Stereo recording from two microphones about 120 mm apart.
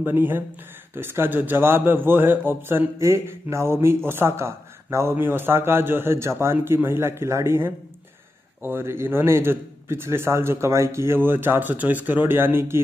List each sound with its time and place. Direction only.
0.0 s a man's voice: 15° right (ahead or behind)